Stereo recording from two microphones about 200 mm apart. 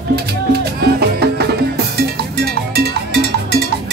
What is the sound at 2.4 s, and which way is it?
Cowbell, 55° right (ahead or behind).